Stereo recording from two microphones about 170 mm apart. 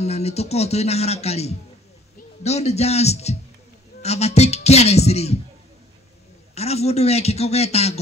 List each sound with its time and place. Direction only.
0.0 s speech: 40° left (ahead or behind)
6.5 s speech: 40° left (ahead or behind)